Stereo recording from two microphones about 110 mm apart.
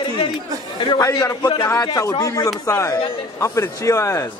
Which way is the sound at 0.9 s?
30° left (ahead or behind).